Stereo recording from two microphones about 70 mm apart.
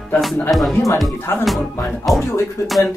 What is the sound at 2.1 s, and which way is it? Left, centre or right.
Speech, centre.